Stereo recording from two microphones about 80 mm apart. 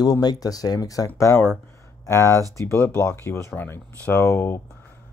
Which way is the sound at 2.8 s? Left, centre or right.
Left.